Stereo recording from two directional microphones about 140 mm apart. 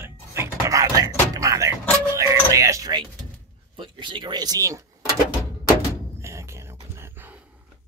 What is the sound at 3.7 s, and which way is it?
Speech, 35° right (ahead or behind).